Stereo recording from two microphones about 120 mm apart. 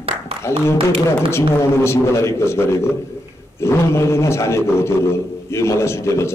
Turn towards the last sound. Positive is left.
turn(degrees=25)  # may be behind; listen again after turning